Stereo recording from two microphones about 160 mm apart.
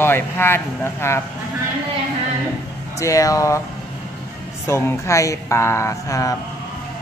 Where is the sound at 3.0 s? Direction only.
20° left (ahead or behind).